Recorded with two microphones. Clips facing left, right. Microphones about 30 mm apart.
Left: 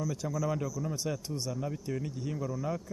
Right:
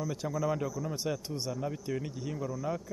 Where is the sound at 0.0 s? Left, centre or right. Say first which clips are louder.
Right 1 dB; right.